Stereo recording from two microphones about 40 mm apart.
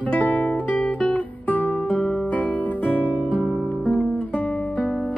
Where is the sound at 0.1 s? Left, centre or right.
Left.